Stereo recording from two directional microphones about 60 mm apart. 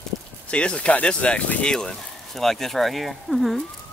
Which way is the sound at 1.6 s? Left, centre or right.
Centre.